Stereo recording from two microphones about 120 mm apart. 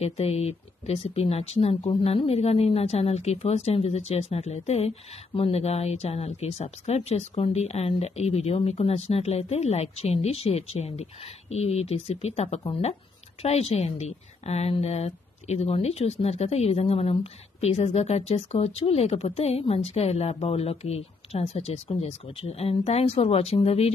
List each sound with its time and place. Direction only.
0.0 s speech: 55° left (ahead or behind)